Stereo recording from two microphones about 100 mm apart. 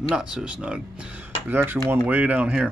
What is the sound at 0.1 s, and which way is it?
Speech, 5° right (ahead or behind).